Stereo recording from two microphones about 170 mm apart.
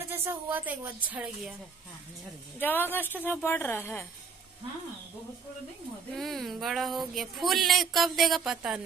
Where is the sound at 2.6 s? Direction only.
10° left (ahead or behind).